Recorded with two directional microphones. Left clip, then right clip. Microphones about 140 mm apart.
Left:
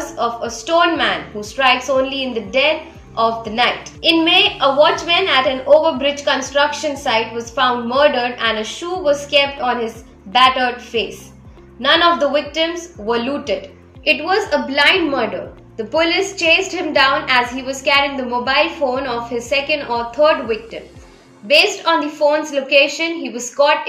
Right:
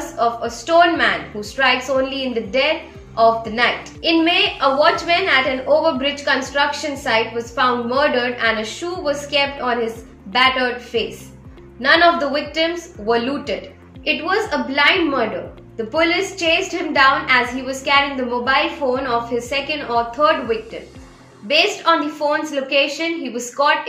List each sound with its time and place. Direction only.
0.2 s a woman's voice: 10° left (ahead or behind)